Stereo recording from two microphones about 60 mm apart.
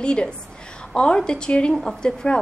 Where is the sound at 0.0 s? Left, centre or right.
Centre.